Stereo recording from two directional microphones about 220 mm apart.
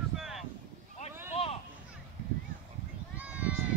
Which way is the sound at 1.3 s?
25° left (ahead or behind).